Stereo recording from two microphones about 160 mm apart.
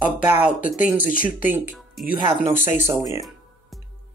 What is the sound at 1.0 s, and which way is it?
Speech, 60° left (ahead or behind).